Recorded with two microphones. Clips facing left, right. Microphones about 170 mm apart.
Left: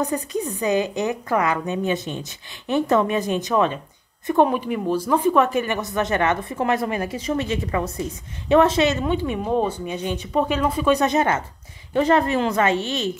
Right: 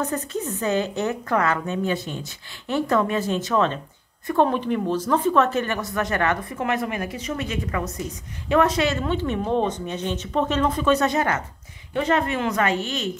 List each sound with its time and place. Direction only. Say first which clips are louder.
0.0 s speech: left 2 dB; 15° left (ahead or behind)
6.6 s a woman's voice: left 4 dB; 35° left (ahead or behind)
11.9 s speech: left 4 dB; 35° left (ahead or behind)